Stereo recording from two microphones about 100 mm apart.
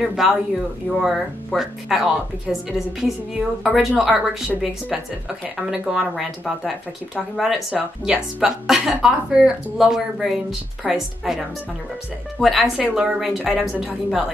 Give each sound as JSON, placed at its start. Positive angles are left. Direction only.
{"t": 0.0, "sound": "a woman's voice", "side_deg": -5}